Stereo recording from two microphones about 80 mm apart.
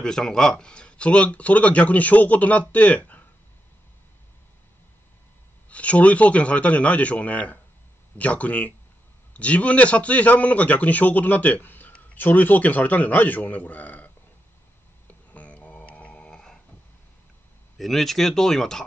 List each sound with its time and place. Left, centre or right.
0.0 s speech: centre
5.7 s a man's voice: centre
15.3 s a sound: centre
17.7 s speech: centre